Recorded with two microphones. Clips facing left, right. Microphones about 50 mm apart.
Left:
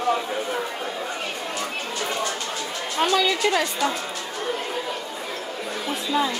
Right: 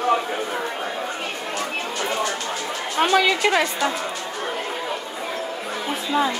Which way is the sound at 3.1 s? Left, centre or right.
Right.